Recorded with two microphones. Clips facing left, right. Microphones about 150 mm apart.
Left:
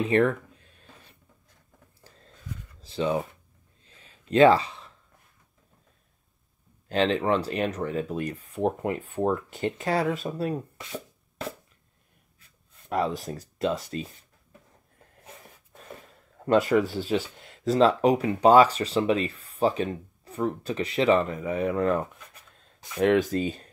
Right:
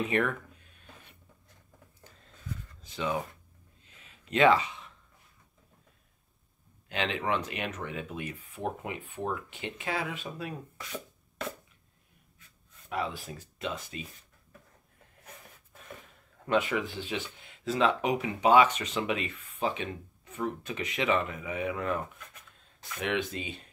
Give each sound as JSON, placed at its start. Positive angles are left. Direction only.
{"t": 0.1, "sound": "a sound", "side_deg": 30}
{"t": 2.8, "sound": "speech", "side_deg": 30}
{"t": 3.8, "sound": "a sound", "side_deg": 30}
{"t": 6.9, "sound": "speech", "side_deg": 35}
{"t": 12.9, "sound": "speech", "side_deg": 40}
{"t": 16.4, "sound": "speech", "side_deg": 40}